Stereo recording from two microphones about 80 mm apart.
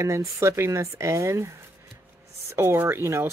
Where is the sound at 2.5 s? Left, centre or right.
Right.